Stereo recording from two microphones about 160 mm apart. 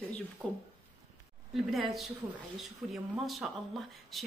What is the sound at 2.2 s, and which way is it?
Speech, 15° right (ahead or behind).